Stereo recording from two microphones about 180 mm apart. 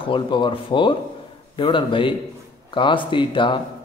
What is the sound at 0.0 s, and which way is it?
A man's voice, 25° left (ahead or behind).